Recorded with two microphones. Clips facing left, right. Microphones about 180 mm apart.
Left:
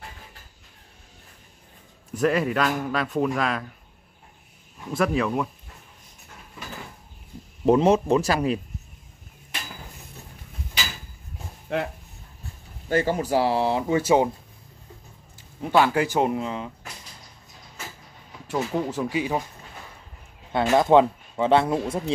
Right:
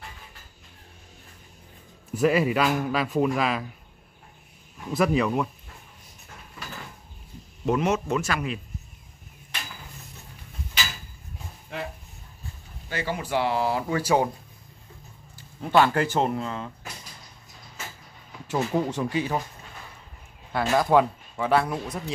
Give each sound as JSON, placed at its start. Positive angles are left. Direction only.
{"t": 2.1, "sound": "a man's voice", "side_deg": -5}
{"t": 4.9, "sound": "a man's voice", "side_deg": 0}
{"t": 7.6, "sound": "speech", "side_deg": 30}
{"t": 11.7, "sound": "speech", "side_deg": 65}
{"t": 12.8, "sound": "speech", "side_deg": 45}
{"t": 15.6, "sound": "speech", "side_deg": 10}
{"t": 18.5, "sound": "a man's voice", "side_deg": 0}
{"t": 20.5, "sound": "speech", "side_deg": 25}